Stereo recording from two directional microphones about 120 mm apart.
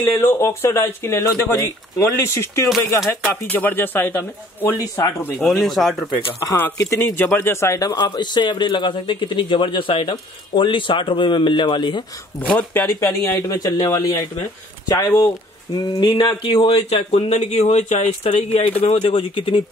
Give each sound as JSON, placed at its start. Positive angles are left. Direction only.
{"t": 0.0, "sound": "speech", "side_deg": 20}
{"t": 5.4, "sound": "speech", "side_deg": 0}
{"t": 6.4, "sound": "speech", "side_deg": 25}
{"t": 12.4, "sound": "speech", "side_deg": 15}
{"t": 16.1, "sound": "speech", "side_deg": 45}